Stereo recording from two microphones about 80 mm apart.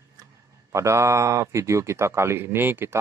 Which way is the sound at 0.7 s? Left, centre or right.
Right.